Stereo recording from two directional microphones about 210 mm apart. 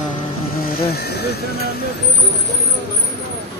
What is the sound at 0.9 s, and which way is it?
Speech, 50° left (ahead or behind).